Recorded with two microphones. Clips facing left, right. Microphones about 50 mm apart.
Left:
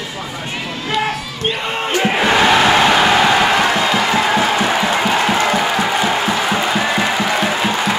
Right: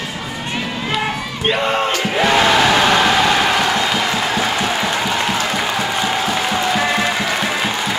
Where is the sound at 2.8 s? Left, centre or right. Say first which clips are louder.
Left 2 dB; centre.